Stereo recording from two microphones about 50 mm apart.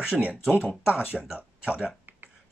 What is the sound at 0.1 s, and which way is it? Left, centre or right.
Speech, right.